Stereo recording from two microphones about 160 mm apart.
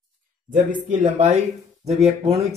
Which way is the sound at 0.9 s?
50° right (ahead or behind).